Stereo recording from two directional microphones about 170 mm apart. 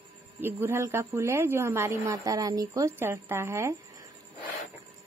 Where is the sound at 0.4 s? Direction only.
15° right (ahead or behind).